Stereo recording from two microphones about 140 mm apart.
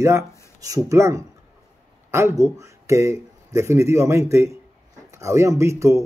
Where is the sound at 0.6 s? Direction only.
25° right (ahead or behind).